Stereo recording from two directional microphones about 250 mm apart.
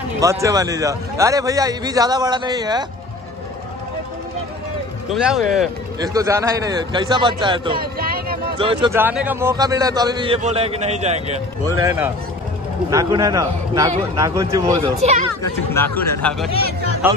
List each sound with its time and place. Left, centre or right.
0.2 s a man's voice: centre
5.1 s speech: centre
6.0 s a man's voice: centre
7.8 s a sound: right
8.5 s speech: right
8.9 s a man's voice: centre; by 11.3 s right
11.7 s a man's voice: centre
15.0 s speech: right
15.7 s a man's voice: centre
17.0 s a man's voice: centre